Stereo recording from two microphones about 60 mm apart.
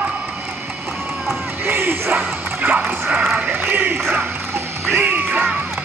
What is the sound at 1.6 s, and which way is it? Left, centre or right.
Music, right.